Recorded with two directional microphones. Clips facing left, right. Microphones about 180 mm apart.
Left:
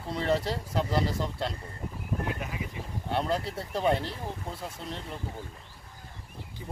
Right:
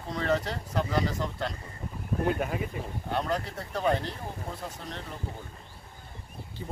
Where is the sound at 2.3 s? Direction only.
50° right (ahead or behind).